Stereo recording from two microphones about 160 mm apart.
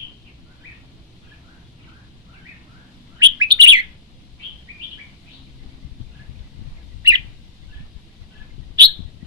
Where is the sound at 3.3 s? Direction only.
25° right (ahead or behind).